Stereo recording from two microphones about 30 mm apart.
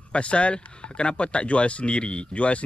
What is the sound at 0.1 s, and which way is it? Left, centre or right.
Speech, left.